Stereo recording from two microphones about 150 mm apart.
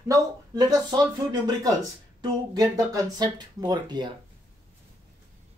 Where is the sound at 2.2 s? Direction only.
25° right (ahead or behind).